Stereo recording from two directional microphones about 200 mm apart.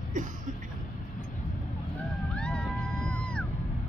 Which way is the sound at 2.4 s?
5° left (ahead or behind).